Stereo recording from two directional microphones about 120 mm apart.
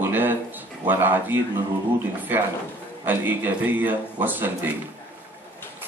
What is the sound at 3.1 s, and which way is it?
Speech, 15° right (ahead or behind).